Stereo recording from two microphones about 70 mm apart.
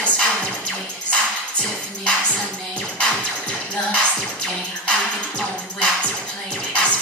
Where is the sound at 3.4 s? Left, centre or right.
Centre.